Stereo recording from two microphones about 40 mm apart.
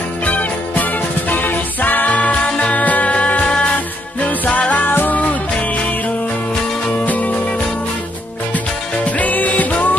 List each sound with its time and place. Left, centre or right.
0.2 s music: left
4.8 s music: left
7.1 s music: left
9.0 s music: left